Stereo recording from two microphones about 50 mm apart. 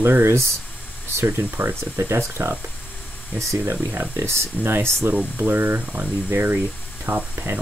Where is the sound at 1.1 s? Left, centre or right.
Right.